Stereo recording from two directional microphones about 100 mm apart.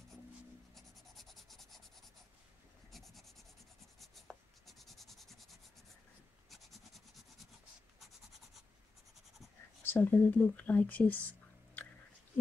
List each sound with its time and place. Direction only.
0.7 s scratch: centre (ahead or behind)
2.9 s writing: centre (ahead or behind)
9.8 s speech: 20° left (ahead or behind)